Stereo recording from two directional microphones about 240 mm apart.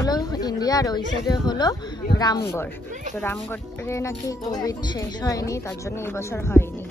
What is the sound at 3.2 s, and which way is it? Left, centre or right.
Speech, centre.